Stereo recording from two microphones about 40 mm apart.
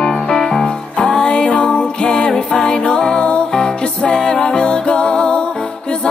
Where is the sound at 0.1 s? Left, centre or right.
Centre.